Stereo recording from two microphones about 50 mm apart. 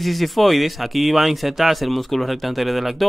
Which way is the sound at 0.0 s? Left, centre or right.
Centre.